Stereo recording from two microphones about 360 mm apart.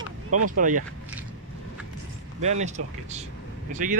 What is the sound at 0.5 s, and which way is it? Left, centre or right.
Speech, right.